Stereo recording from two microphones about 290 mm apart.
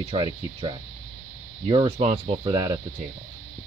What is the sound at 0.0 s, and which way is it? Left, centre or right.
Speech, centre.